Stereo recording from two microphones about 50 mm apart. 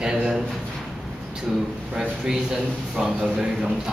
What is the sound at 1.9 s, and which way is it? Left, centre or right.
A man's voice, centre.